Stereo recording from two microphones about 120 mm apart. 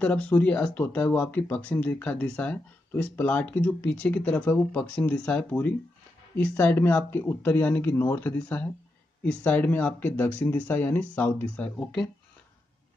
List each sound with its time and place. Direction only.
0.0 s speech: 15° left (ahead or behind)